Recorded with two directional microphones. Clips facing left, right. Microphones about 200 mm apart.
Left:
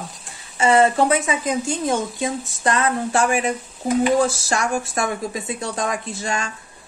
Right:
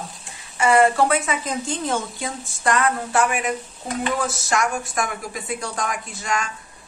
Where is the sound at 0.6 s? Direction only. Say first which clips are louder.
Left 1 dB; 20° left (ahead or behind).